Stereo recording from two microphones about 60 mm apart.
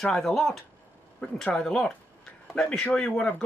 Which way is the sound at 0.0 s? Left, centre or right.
Centre.